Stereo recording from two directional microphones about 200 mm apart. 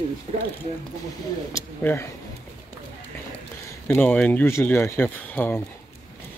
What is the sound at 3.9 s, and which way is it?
Speech, 10° left (ahead or behind).